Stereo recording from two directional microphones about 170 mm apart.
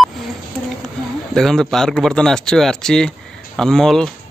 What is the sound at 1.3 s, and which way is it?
Speech, centre (ahead or behind).